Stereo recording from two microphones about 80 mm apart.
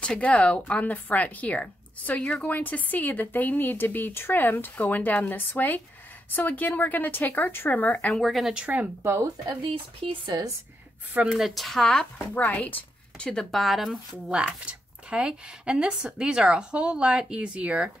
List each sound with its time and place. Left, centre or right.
0.0 s speech: centre
8.1 s speech: centre
8.5 s speech: centre
9.0 s speech: right
11.2 s speech: centre
12.2 s a woman's voice: left; by 13.9 s centre
14.3 s speech: centre